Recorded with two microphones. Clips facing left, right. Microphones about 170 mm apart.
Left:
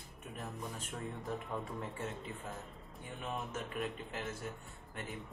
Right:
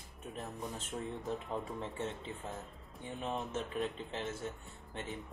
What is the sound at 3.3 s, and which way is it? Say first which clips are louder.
Speech: right 3 dB; 25° right (ahead or behind).